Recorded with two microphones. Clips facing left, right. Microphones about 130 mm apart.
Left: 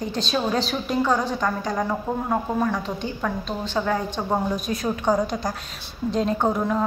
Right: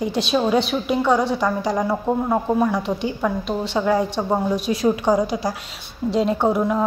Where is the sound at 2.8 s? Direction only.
70° right (ahead or behind).